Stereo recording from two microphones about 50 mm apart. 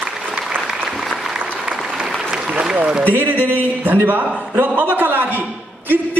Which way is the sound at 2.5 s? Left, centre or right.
Centre.